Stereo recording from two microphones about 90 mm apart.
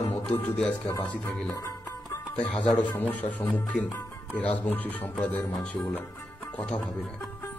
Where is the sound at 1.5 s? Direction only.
35° left (ahead or behind).